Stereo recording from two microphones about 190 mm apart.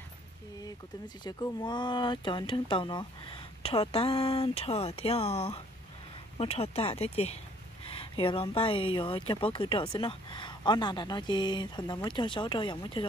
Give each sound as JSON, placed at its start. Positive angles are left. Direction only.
{"t": 0.7, "sound": "speech", "side_deg": 20}